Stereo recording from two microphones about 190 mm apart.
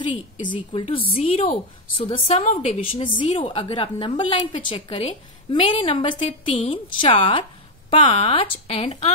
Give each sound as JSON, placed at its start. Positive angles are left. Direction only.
{"t": 0.0, "sound": "a woman's voice", "side_deg": 25}